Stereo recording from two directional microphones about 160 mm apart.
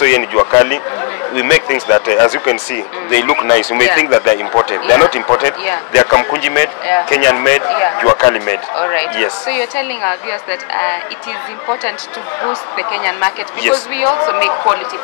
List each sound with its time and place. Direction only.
0.0 s speech: 15° left (ahead or behind)
12.4 s speech: 15° left (ahead or behind)